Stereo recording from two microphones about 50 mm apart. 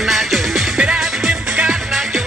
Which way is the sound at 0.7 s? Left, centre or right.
Centre.